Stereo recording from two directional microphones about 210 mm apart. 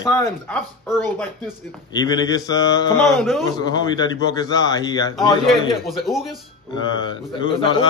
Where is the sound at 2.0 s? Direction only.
20° left (ahead or behind).